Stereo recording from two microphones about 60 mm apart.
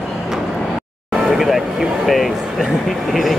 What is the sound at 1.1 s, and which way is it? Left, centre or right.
Speech, centre.